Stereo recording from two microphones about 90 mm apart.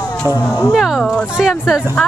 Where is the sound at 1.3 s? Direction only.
5° right (ahead or behind).